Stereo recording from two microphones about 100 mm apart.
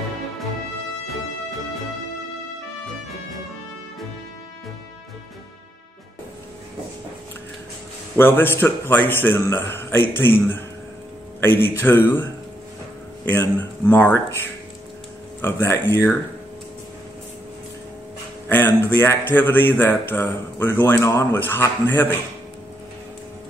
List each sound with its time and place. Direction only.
8.2 s speech: 25° left (ahead or behind)
18.9 s speech: 20° left (ahead or behind)